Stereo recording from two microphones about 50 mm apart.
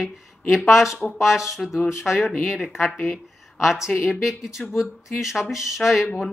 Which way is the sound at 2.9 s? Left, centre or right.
Centre.